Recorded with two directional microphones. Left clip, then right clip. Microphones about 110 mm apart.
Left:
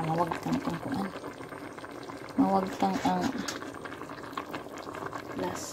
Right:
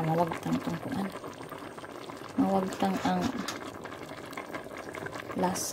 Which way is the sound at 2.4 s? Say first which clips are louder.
Left 2 dB; 20° right (ahead or behind).